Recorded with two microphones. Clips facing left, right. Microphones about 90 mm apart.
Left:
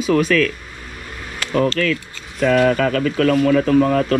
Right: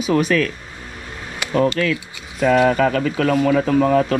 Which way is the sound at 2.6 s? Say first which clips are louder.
Even; 25° right (ahead or behind).